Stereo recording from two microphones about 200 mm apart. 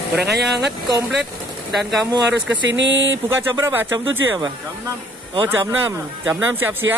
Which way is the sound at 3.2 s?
15° right (ahead or behind).